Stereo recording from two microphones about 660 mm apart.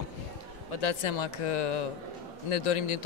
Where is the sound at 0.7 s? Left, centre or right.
Left.